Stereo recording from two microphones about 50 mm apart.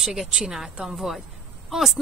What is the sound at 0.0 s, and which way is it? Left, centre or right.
Speech, centre.